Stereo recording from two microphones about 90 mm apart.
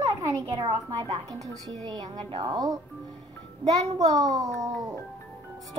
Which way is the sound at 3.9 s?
45° right (ahead or behind).